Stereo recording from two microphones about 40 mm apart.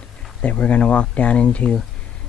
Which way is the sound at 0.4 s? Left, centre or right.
Left.